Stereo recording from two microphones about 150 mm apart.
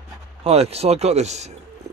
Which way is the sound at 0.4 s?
40° right (ahead or behind).